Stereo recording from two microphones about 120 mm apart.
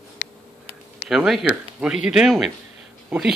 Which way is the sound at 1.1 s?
5° right (ahead or behind).